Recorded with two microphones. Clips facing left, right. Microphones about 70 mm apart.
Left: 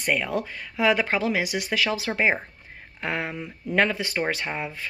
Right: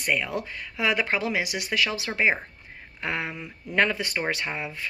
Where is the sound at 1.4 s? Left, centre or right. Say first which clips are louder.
Left 1 dB; left.